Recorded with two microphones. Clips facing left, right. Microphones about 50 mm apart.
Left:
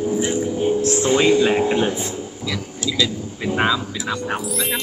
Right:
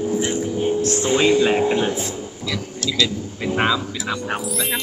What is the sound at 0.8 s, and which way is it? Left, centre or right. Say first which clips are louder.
Speech: left 2 dB; centre.